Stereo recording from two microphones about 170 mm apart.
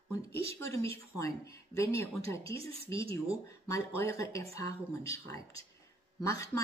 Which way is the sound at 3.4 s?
15° left (ahead or behind).